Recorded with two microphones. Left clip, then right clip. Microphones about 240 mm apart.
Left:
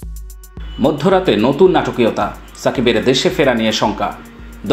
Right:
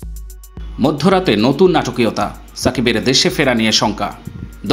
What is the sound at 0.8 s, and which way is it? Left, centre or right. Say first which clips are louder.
Speech: left 1 dB; right.